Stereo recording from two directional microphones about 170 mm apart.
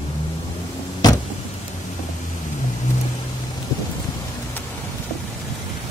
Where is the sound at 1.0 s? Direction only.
20° left (ahead or behind).